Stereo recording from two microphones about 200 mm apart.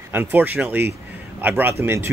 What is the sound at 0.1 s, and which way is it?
Speech, 10° right (ahead or behind).